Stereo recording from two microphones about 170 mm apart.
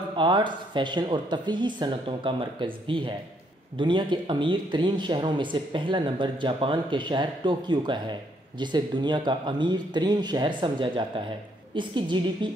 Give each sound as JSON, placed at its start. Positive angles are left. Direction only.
{"t": 0.1, "sound": "speech", "side_deg": -30}